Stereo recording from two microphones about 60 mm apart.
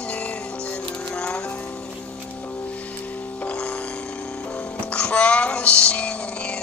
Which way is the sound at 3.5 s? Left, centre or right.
Left.